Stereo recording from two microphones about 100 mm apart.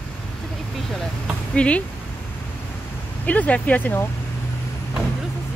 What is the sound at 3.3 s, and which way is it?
Speech, 15° left (ahead or behind).